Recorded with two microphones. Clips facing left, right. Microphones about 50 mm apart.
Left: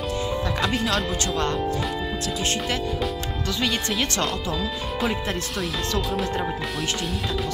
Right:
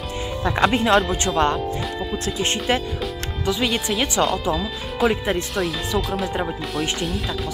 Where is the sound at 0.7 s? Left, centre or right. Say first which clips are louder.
Right 6 dB; right.